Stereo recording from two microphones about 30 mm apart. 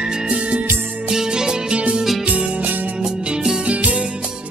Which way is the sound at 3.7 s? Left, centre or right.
Right.